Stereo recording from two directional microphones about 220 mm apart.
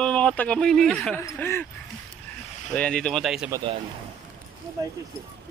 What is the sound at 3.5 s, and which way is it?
Speech, 20° right (ahead or behind).